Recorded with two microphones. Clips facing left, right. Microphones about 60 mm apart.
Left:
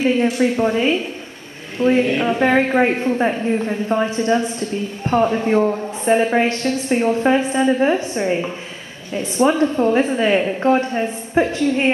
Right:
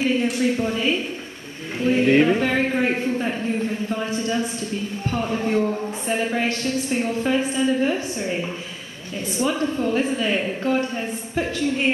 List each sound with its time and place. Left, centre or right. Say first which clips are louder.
0.2 s a woman's voice: left 5 dB; left